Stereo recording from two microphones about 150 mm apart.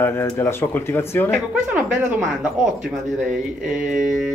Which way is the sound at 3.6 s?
5° right (ahead or behind).